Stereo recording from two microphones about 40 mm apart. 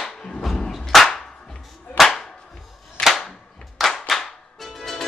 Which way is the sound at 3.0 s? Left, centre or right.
Left.